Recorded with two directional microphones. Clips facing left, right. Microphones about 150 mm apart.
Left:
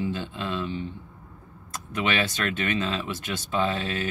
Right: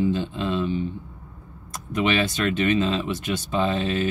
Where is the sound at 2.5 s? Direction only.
20° right (ahead or behind).